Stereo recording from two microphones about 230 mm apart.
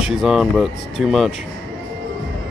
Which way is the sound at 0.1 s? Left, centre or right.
Centre.